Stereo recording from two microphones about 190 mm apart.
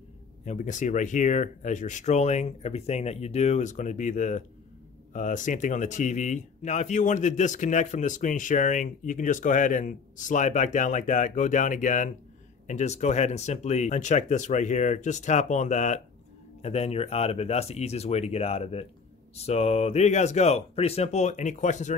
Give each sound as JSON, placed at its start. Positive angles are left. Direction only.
{"t": 0.5, "sound": "speech", "side_deg": 40}